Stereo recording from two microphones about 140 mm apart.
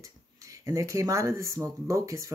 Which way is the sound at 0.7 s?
20° right (ahead or behind).